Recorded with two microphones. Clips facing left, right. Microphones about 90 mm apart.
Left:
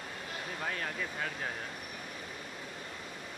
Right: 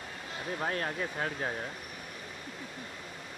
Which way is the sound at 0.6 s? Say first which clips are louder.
Right 4 dB; 35° right (ahead or behind).